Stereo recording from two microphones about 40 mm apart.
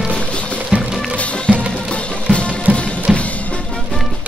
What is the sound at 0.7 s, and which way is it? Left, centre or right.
Music, right.